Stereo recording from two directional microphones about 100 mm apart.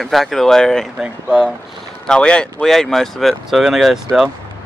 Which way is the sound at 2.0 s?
10° left (ahead or behind).